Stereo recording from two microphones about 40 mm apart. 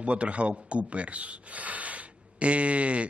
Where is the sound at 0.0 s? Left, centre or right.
Right.